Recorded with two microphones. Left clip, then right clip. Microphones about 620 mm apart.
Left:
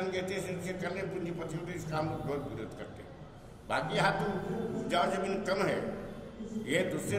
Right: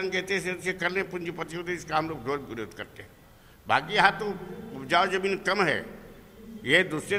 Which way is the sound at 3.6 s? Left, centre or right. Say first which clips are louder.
Right 8 dB; right.